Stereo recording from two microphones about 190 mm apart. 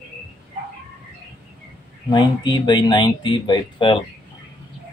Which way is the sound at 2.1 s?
25° left (ahead or behind).